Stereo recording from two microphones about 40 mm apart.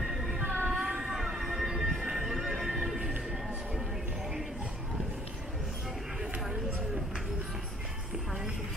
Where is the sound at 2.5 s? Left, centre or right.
Centre.